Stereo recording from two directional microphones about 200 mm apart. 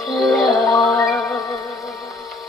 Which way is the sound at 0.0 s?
Centre (ahead or behind).